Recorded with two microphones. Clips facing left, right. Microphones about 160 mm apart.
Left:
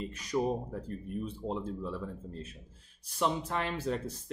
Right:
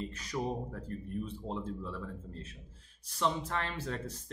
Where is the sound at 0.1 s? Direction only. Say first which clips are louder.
Left 5 dB; 15° left (ahead or behind).